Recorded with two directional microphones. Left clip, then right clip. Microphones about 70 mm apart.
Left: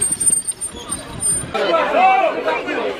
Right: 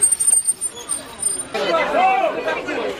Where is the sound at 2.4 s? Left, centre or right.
Right.